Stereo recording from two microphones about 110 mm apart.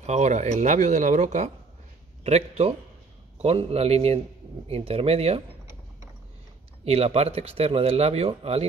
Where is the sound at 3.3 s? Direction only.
70° right (ahead or behind).